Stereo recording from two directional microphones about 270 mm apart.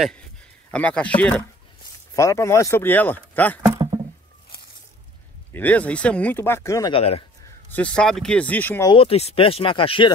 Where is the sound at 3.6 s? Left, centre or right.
Centre.